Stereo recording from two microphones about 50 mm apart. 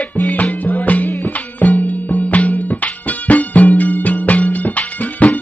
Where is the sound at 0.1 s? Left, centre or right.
Left.